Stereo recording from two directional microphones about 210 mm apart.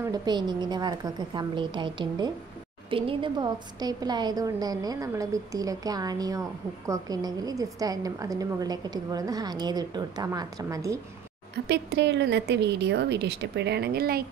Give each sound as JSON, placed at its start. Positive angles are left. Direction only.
{"t": 0.1, "sound": "a woman's voice", "side_deg": -20}
{"t": 11.5, "sound": "a woman's voice", "side_deg": -50}